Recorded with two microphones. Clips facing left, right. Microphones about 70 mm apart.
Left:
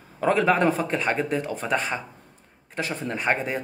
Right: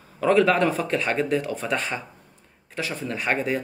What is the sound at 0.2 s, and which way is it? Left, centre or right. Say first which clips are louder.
A man's voice: right 1 dB; centre.